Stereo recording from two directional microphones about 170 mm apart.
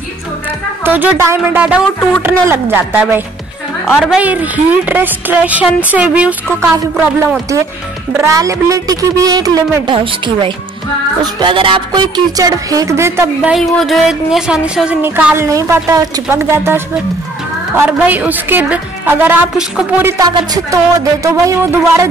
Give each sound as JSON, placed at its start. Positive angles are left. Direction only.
{"t": 0.8, "sound": "a woman's voice", "side_deg": -10}
{"t": 3.8, "sound": "a woman's voice", "side_deg": 0}
{"t": 8.2, "sound": "a woman's voice", "side_deg": -20}
{"t": 13.5, "sound": "a woman's voice", "side_deg": 0}